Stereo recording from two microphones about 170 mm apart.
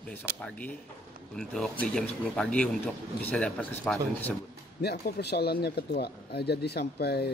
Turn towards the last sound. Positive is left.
turn(degrees=70)  # may be behind; listen again after turning